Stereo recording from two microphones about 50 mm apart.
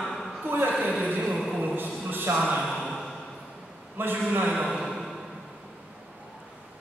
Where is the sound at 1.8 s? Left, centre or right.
Right.